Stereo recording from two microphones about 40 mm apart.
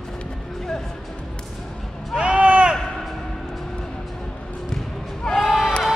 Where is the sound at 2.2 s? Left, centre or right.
Right.